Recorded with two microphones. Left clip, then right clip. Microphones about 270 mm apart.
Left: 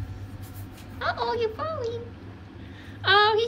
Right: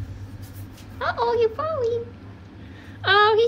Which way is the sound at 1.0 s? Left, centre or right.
Centre.